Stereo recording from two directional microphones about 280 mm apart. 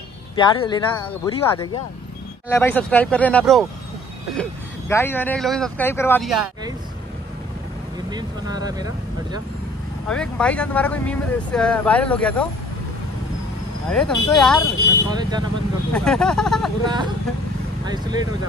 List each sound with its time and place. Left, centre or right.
0.4 s speech: centre
8.1 s speech: centre
10.0 s speech: centre
13.8 s speech: centre
15.0 s speech: centre
15.9 s speech: centre
16.8 s speech: centre